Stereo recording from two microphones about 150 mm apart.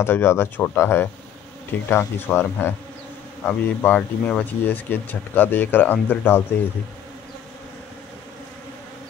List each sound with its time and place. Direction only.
0.0 s speech: 15° left (ahead or behind)